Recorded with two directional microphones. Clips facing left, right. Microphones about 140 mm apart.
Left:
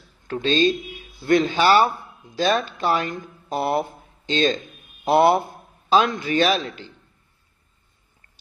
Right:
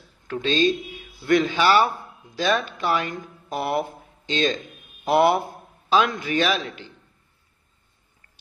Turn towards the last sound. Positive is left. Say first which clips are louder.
# left 3 dB
turn(degrees=35)  # may be behind; listen again after turning